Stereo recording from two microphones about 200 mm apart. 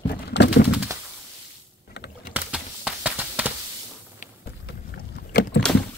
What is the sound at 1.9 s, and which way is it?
Typing, 60° left (ahead or behind).